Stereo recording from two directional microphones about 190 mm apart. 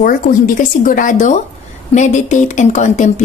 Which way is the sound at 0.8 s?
45° left (ahead or behind).